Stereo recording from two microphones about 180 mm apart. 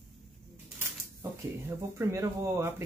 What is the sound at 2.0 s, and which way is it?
Speech, 15° right (ahead or behind).